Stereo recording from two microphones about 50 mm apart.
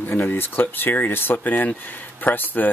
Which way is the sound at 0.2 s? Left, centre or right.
Left.